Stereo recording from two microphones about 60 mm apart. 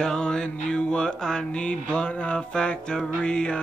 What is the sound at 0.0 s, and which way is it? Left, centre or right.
Mantra, centre.